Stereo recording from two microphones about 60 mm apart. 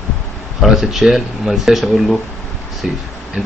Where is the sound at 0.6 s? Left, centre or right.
Centre.